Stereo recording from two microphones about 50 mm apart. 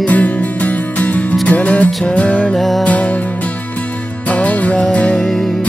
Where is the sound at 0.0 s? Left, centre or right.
Left.